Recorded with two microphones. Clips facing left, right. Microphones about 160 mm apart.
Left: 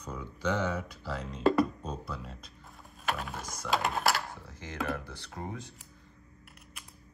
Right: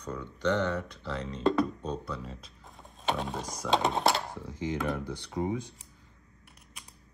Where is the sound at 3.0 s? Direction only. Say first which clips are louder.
Right 3 dB; 25° right (ahead or behind).